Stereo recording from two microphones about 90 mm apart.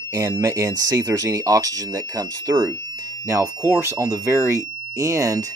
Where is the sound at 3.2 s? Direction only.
30° right (ahead or behind).